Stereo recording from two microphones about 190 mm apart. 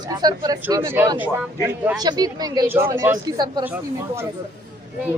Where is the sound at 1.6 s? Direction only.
10° right (ahead or behind).